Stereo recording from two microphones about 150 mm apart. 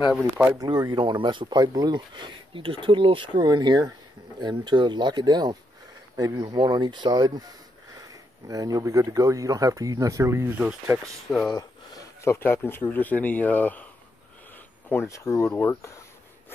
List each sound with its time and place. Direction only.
0.6 s speech: 30° right (ahead or behind); by 11.0 s 10° right (ahead or behind)
11.2 s speech: 5° left (ahead or behind)
11.5 s speech: 20° left (ahead or behind)
14.9 s speech: 20° left (ahead or behind)